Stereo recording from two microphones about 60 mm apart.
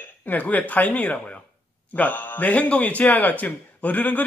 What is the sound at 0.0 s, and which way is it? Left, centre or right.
A man's voice, left.